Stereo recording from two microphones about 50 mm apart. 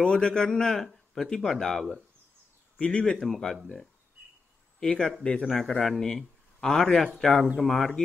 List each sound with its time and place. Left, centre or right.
0.0 s speech: centre
4.7 s speech: centre